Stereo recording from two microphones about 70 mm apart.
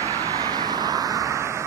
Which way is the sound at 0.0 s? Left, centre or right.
Right.